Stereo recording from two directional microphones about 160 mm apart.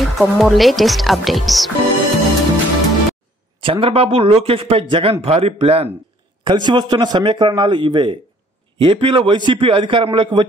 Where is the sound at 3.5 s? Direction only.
30° right (ahead or behind).